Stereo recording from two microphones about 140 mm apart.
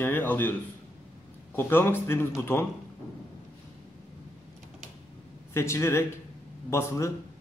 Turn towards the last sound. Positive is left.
turn(degrees=20)  # may be behind; listen again after turning